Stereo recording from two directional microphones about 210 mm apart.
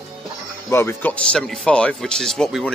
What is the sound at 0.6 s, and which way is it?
Speech, 10° left (ahead or behind).